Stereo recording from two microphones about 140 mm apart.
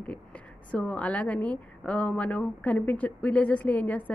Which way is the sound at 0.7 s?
10° left (ahead or behind).